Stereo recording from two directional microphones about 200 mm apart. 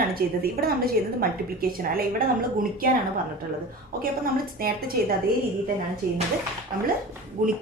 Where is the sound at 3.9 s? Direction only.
45° right (ahead or behind).